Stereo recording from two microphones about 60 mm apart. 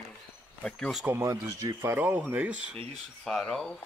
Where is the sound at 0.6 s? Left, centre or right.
Centre.